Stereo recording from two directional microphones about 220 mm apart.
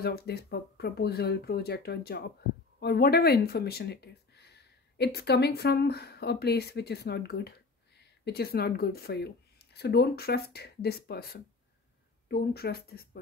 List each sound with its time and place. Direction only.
0.0 s speech: 45° left (ahead or behind)